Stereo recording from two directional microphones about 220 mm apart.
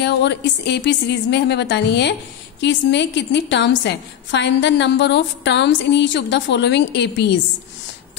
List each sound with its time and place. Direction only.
0.0 s a woman's voice: 50° left (ahead or behind)